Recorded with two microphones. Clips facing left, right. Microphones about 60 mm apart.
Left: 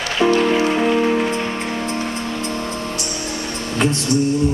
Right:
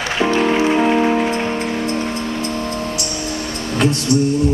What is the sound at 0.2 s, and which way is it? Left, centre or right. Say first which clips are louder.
Music: left 1 dB; centre.